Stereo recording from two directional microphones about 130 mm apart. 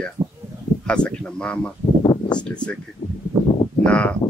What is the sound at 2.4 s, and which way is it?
Speech, 10° left (ahead or behind).